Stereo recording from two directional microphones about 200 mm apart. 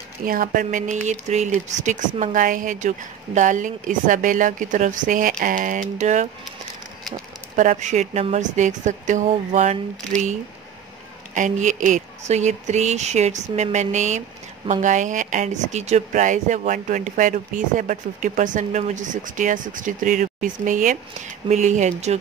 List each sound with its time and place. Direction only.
0.2 s speech: 45° right (ahead or behind)
7.5 s speech: 40° right (ahead or behind)
11.3 s speech: 40° right (ahead or behind)